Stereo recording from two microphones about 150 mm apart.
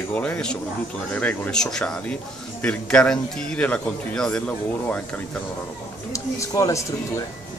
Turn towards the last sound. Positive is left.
turn(degrees=20)  # may be behind; listen again after turning